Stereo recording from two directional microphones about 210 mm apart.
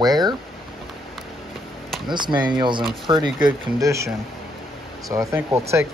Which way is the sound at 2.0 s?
20° right (ahead or behind).